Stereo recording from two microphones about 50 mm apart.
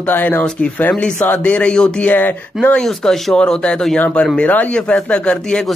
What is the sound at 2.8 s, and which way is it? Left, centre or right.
Speech, centre.